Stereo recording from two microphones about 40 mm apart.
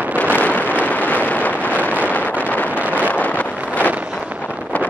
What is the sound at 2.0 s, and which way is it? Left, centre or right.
Wind noise, left.